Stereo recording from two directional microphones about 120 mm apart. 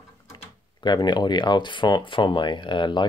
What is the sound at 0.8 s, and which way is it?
Speech, 40° left (ahead or behind).